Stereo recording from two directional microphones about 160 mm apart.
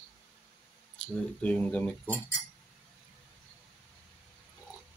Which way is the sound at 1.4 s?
10° left (ahead or behind).